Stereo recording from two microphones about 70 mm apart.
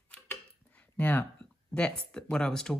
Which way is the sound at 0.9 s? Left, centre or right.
Left.